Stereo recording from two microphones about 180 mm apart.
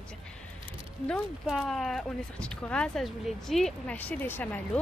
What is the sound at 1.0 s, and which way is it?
Speech, 5° left (ahead or behind).